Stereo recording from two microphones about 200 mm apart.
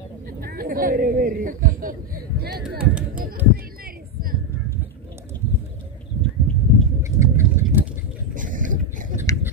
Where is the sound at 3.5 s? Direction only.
45° right (ahead or behind).